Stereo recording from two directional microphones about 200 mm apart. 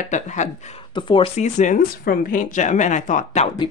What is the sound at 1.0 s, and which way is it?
A woman's voice, 25° left (ahead or behind).